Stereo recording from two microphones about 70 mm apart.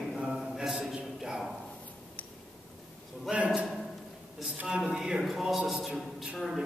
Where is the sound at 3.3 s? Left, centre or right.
Centre.